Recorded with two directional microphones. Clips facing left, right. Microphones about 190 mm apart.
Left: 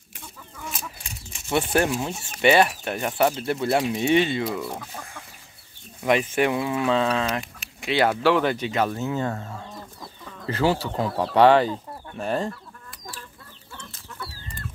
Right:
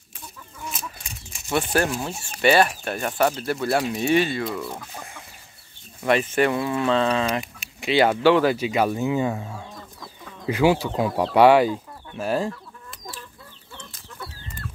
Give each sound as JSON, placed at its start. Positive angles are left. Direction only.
{"t": 1.7, "sound": "speech", "side_deg": 20}
{"t": 4.5, "sound": "speech", "side_deg": 10}
{"t": 6.0, "sound": "speech", "side_deg": 10}
{"t": 7.2, "sound": "a sound", "side_deg": 0}
{"t": 8.2, "sound": "speech", "side_deg": 0}